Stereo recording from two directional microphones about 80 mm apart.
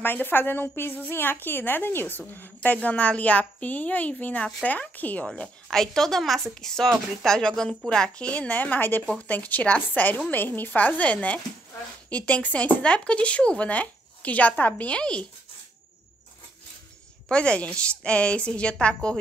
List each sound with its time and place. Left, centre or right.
0.0 s a woman's voice: left
5.2 s a woman's voice: centre
17.3 s speech: centre